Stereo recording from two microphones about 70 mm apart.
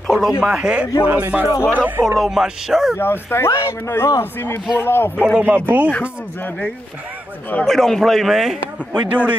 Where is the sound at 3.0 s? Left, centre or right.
Left.